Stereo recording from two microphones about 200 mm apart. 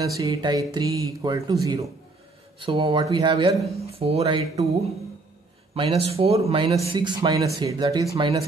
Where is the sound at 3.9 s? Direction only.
30° right (ahead or behind).